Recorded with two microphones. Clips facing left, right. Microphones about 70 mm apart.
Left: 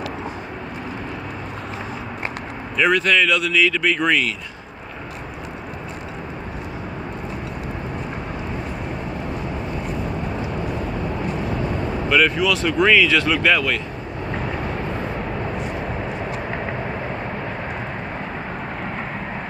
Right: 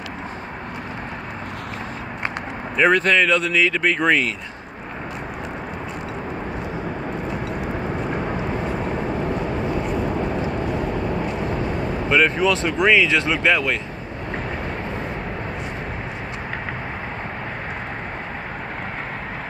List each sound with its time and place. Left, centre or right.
2.8 s speech: right
12.1 s speech: right